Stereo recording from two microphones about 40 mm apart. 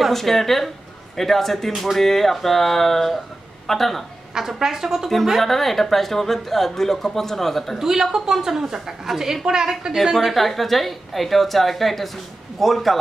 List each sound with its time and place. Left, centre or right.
0.1 s a woman's voice: centre
4.3 s a woman's voice: centre
7.8 s a woman's voice: centre
10.1 s a woman's voice: centre